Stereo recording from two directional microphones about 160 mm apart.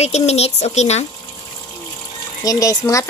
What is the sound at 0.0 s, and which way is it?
Speech, 40° left (ahead or behind).